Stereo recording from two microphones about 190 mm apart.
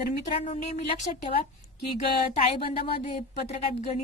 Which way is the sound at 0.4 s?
40° left (ahead or behind).